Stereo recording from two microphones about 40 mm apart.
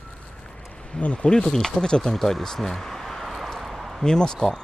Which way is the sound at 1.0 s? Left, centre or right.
Left.